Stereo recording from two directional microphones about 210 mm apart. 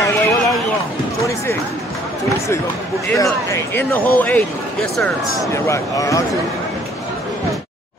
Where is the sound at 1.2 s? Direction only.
15° left (ahead or behind).